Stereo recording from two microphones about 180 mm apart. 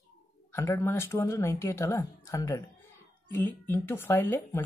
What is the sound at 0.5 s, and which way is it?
A woman's voice, 15° left (ahead or behind).